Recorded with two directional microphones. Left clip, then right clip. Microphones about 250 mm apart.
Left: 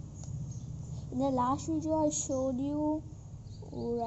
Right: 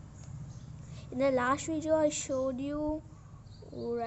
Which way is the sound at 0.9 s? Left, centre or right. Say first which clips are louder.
Right 2 dB; centre.